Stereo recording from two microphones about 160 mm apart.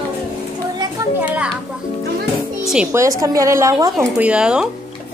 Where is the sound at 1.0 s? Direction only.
20° right (ahead or behind).